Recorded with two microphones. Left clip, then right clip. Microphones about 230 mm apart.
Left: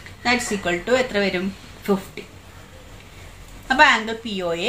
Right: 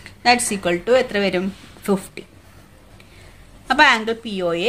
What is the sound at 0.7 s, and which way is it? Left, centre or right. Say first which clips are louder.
Speech: right 4 dB; right.